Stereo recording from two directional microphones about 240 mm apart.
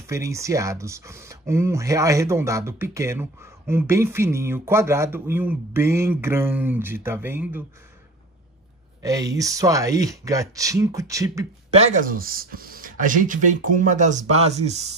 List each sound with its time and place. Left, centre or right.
0.0 s speech: centre
9.0 s speech: centre
11.7 s speech: right